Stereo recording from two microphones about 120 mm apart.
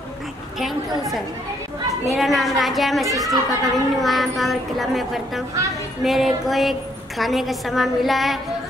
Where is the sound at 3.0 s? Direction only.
30° right (ahead or behind).